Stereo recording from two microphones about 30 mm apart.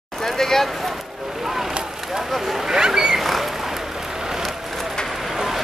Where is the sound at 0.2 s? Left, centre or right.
Centre.